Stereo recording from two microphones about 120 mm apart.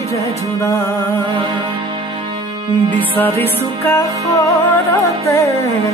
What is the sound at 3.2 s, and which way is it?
Music, 15° left (ahead or behind).